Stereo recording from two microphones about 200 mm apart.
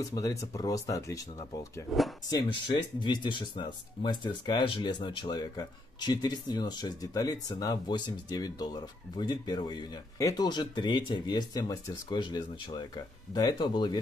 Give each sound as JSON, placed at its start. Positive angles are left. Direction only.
{"t": 0.0, "sound": "speech", "side_deg": 15}
{"t": 1.9, "sound": "speech", "side_deg": 0}
{"t": 3.0, "sound": "speech", "side_deg": 25}